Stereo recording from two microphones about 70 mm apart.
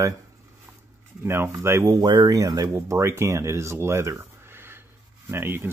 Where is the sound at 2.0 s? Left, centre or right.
Right.